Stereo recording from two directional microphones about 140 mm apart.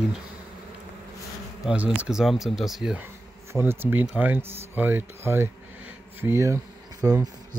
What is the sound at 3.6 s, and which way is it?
Speech, 15° right (ahead or behind).